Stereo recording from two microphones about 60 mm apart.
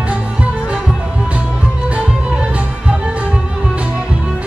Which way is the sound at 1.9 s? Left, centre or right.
Centre.